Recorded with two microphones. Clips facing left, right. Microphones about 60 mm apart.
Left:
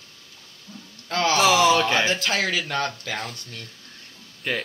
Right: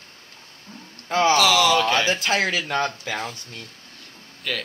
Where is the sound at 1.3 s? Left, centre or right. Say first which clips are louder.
Left 2 dB; left.